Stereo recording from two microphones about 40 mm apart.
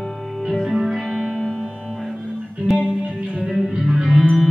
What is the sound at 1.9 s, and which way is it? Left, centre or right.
Music, centre.